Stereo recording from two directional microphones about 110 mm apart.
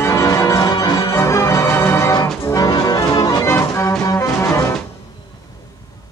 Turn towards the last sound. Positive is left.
turn(degrees=25)  # may be behind; listen again after turning